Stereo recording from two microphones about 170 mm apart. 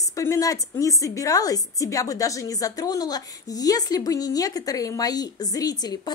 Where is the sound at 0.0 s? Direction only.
20° left (ahead or behind).